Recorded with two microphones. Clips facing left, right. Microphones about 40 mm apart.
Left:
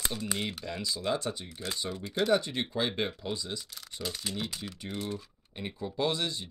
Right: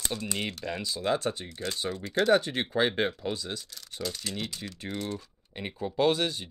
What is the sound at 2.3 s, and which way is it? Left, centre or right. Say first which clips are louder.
Speech: right 4 dB; right.